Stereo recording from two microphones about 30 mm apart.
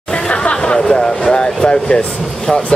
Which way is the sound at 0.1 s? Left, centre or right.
Left.